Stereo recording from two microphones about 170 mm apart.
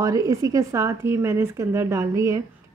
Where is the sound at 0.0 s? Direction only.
20° right (ahead or behind).